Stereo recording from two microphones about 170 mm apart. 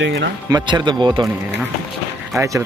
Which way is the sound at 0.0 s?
90° right.